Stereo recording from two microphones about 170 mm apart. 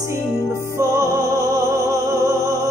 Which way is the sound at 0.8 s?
15° right (ahead or behind).